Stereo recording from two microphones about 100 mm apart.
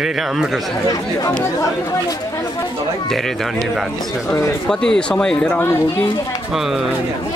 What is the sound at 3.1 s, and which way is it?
Speech, centre (ahead or behind).